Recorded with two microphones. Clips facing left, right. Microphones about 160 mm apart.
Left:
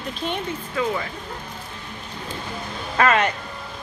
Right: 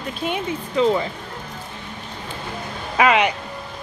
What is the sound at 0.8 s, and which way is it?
Speech, 25° right (ahead or behind).